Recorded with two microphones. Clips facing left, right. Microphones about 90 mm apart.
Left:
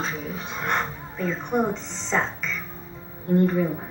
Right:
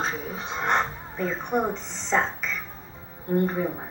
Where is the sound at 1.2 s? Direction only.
15° right (ahead or behind).